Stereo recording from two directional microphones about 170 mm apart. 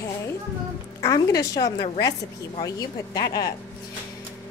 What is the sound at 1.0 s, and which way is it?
Speech, 20° left (ahead or behind).